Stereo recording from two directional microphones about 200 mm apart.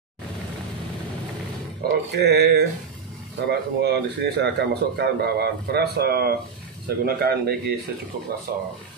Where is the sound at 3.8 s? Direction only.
55° right (ahead or behind).